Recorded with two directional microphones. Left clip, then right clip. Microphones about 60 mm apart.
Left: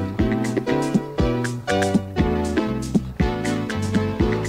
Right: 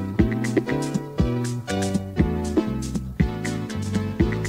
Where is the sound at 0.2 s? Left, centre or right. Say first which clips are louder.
Even; centre.